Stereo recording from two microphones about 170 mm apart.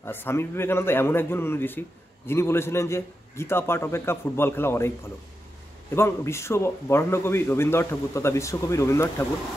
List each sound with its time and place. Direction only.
0.0 s a man's voice: 15° left (ahead or behind)
5.9 s a man's voice: 15° left (ahead or behind)